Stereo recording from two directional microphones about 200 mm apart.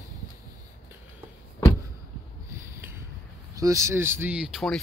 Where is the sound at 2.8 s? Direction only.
10° right (ahead or behind).